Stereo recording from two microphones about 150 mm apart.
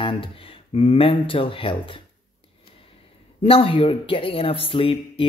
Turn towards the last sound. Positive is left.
turn(degrees=35)  # may be behind; listen again after turning